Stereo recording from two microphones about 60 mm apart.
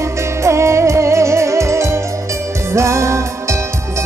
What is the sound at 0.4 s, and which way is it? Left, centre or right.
Music, right.